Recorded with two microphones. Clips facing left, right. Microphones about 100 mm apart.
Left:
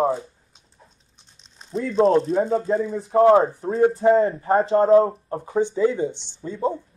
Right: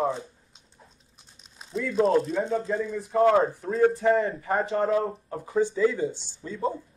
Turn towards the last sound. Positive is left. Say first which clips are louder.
# left 5 dB
turn(degrees=30)  # may be behind; listen again after turning